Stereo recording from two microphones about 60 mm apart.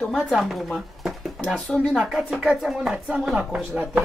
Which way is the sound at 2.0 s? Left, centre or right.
Centre.